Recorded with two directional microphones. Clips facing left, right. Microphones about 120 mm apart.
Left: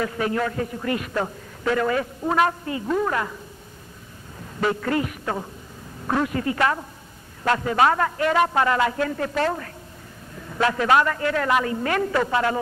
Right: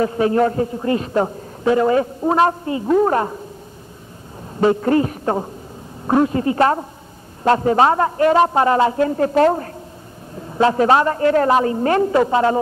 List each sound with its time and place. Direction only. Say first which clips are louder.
0.0 s a man's voice: right 8 dB; 30° right (ahead or behind)
4.6 s a woman's voice: right 8 dB; 30° right (ahead or behind)